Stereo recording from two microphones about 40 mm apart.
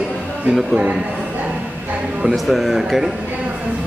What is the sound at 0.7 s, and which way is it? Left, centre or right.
Speech, right.